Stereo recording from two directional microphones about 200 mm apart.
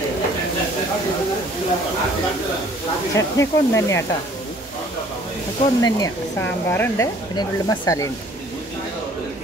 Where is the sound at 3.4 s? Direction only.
15° left (ahead or behind).